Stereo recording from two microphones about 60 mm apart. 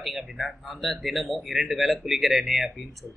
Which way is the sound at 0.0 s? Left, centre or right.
Centre.